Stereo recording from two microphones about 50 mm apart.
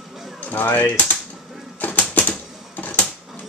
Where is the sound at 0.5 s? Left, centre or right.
Left.